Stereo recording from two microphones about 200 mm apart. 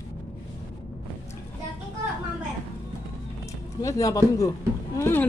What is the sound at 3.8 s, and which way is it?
Speech, 15° left (ahead or behind).